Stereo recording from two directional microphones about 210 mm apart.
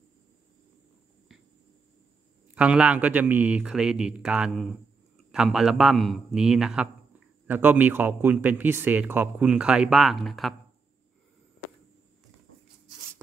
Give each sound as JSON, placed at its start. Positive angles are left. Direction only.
{"t": 2.5, "sound": "a man's voice", "side_deg": -5}